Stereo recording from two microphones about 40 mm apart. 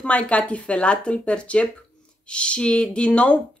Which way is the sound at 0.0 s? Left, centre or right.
Left.